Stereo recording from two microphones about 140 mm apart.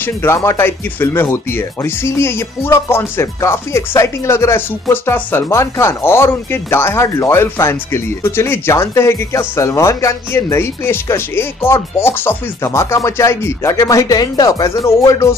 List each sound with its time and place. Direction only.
0.0 s speech: 20° left (ahead or behind)